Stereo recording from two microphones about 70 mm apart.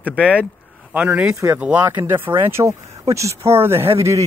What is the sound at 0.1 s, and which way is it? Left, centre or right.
Speech, centre.